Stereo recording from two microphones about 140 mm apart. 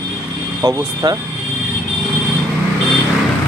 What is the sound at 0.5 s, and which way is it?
Speech, 25° right (ahead or behind).